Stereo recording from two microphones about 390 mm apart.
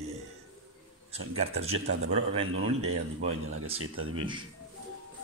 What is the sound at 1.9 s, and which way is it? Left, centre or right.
Speech, right.